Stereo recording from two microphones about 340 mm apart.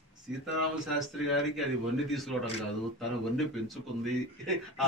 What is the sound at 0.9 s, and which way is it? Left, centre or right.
Speech, centre.